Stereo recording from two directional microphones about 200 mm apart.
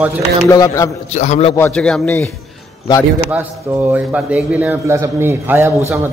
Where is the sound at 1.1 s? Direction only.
35° left (ahead or behind).